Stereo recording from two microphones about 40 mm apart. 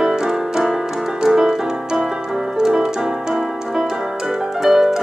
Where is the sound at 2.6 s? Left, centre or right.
Centre.